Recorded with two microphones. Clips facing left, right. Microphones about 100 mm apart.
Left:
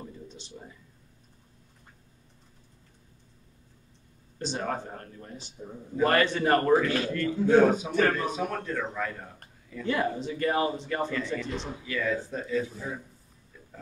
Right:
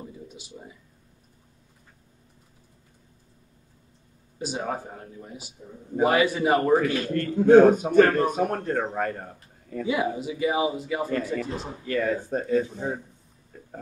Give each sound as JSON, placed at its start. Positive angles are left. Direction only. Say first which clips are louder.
{"t": 0.0, "sound": "a sound", "louder": "right 2 dB", "side_deg": -10}
{"t": 4.4, "sound": "a man's voice", "louder": "right 2 dB", "side_deg": -10}
{"t": 7.1, "sound": "a man's voice", "louder": "right 10 dB", "side_deg": -50}
{"t": 9.8, "sound": "a man's voice", "louder": "right 2 dB", "side_deg": -10}
{"t": 11.1, "sound": "a man's voice", "louder": "right 4 dB", "side_deg": -45}
{"t": 13.5, "sound": "a sound", "louder": "right 6 dB", "side_deg": -50}